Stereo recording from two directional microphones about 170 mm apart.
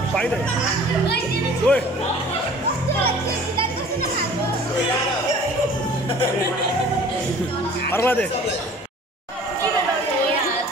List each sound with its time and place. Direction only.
1.7 s speech: 5° left (ahead or behind)
7.9 s speech: 10° left (ahead or behind)